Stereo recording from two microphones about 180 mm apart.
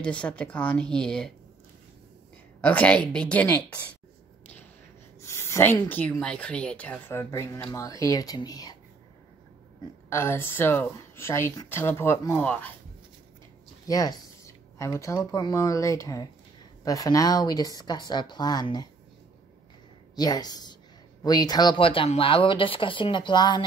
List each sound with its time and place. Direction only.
0.0 s speech: 5° left (ahead or behind)
2.6 s speech: 10° left (ahead or behind)
5.2 s speech: 15° left (ahead or behind)
10.0 s speech: 15° left (ahead or behind)
13.8 s speech: 20° left (ahead or behind)
20.2 s speech: 20° left (ahead or behind)